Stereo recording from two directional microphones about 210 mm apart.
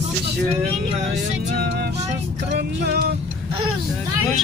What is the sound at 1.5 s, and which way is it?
Speech, 50° right (ahead or behind).